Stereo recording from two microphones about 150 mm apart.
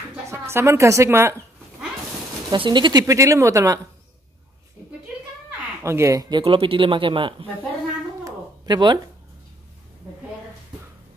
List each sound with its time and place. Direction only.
0.1 s speech: 15° right (ahead or behind)
2.5 s speech: 30° right (ahead or behind)
5.8 s speech: 20° right (ahead or behind)
6.4 s speech: 40° right (ahead or behind)
8.2 s a sound: 30° right (ahead or behind)